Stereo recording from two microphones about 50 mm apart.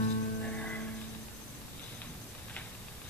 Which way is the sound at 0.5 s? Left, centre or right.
Left.